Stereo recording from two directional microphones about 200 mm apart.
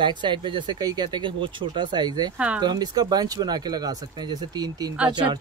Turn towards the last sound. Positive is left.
turn(degrees=-20)  # may be behind; listen again after turning